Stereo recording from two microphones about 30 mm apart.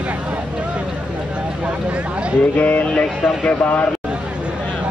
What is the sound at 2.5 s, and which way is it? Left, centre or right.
Music, left.